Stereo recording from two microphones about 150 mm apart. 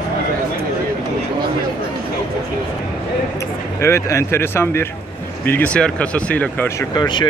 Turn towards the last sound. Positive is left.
turn(degrees=30)  # may be behind; listen again after turning